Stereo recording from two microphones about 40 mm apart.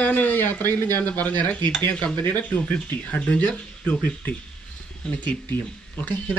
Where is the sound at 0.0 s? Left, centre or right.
Left.